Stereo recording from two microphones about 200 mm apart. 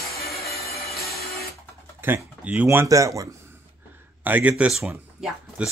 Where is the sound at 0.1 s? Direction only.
50° left (ahead or behind).